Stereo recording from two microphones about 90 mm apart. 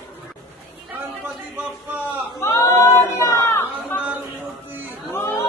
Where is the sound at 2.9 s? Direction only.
40° left (ahead or behind).